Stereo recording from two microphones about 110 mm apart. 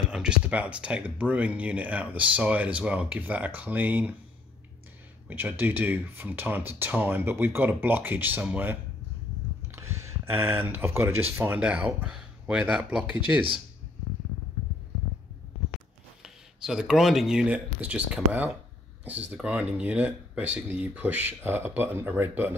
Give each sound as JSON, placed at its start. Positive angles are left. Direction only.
{"t": 0.1, "sound": "speech", "side_deg": -10}
{"t": 5.3, "sound": "speech", "side_deg": -20}
{"t": 16.2, "sound": "speech", "side_deg": -5}